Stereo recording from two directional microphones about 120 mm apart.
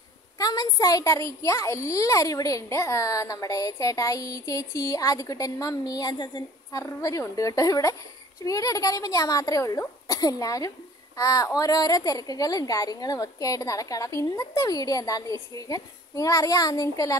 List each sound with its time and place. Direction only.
0.4 s a child's voice: 30° left (ahead or behind)
6.8 s a child's voice: 20° left (ahead or behind)